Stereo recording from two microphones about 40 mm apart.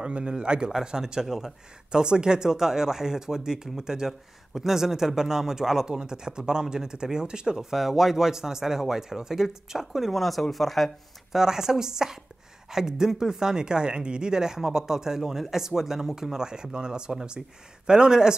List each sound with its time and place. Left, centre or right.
0.0 s speech: right
7.5 s speech: centre
11.3 s speech: centre